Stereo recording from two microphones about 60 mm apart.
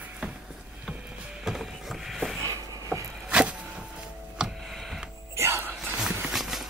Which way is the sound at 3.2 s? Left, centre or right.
Centre.